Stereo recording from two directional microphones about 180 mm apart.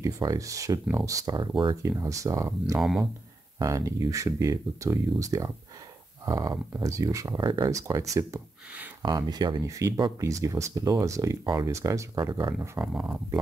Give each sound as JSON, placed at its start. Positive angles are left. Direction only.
{"t": 0.0, "sound": "speech", "side_deg": -20}
{"t": 2.8, "sound": "speech", "side_deg": 0}
{"t": 3.5, "sound": "speech", "side_deg": -20}
{"t": 12.5, "sound": "speech", "side_deg": -5}